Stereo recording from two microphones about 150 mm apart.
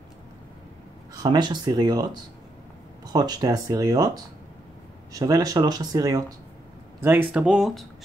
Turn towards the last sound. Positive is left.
turn(degrees=0)  # may be behind; listen again after turning